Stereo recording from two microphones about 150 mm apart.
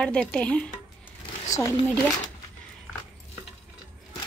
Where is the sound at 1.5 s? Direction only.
20° left (ahead or behind).